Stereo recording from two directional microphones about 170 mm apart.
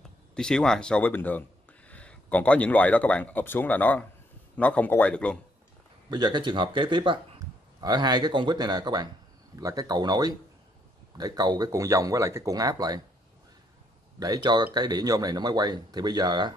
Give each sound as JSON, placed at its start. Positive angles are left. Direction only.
{"t": 0.3, "sound": "speech", "side_deg": 5}
{"t": 6.0, "sound": "speech", "side_deg": -25}
{"t": 14.2, "sound": "speech", "side_deg": -25}